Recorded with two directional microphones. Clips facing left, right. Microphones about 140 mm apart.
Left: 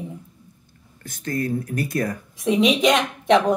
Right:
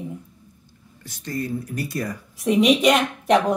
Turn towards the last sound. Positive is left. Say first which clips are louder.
# even
turn(degrees=-5)  # may be behind; listen again after turning